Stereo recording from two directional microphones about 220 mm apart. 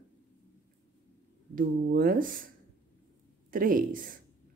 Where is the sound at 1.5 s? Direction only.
40° right (ahead or behind).